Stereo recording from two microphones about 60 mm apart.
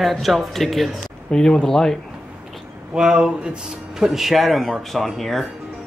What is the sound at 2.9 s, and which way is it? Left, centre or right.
Speech, centre.